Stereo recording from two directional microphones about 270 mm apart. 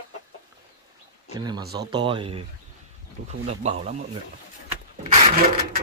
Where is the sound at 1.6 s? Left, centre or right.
Right.